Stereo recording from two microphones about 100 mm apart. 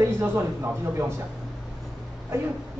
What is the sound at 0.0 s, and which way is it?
A woman's voice, 25° right (ahead or behind).